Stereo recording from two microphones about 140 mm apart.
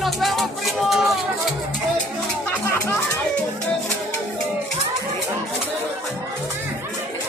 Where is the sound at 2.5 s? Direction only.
15° left (ahead or behind).